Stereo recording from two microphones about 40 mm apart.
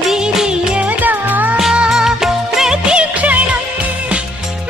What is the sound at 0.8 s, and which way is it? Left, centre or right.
Music, right.